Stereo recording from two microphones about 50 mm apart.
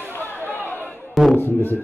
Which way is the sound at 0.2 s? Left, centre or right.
Left.